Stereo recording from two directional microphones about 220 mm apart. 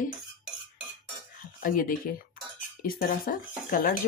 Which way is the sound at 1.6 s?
40° left (ahead or behind).